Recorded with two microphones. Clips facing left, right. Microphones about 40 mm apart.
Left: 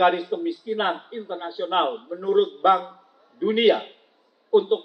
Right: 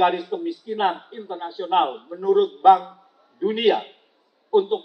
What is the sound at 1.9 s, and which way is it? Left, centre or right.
Speech, centre.